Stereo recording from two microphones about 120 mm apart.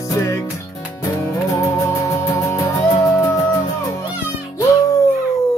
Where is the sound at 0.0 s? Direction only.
25° left (ahead or behind).